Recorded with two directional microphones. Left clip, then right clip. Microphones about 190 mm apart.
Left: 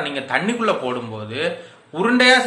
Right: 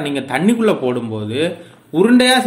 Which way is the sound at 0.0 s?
45° right (ahead or behind).